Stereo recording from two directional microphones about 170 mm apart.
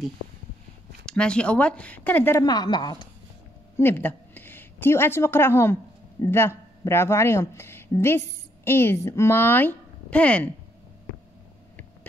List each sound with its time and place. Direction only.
1.0 s speech: 5° left (ahead or behind)
2.4 s a woman's voice: 25° left (ahead or behind)
3.7 s a woman's voice: 10° left (ahead or behind)